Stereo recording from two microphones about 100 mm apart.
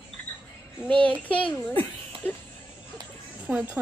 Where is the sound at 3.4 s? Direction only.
15° right (ahead or behind).